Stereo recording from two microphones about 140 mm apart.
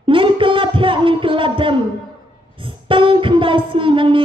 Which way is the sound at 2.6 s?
40° right (ahead or behind).